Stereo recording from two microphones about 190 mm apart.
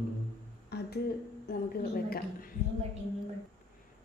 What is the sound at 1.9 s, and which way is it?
Speech, 50° left (ahead or behind).